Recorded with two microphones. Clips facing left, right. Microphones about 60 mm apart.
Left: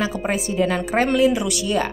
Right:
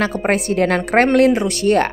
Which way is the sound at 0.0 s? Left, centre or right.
Right.